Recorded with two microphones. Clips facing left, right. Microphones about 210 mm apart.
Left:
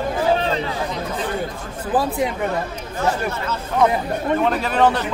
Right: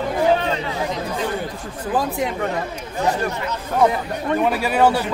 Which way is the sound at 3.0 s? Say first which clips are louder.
Right 1 dB; 15° right (ahead or behind).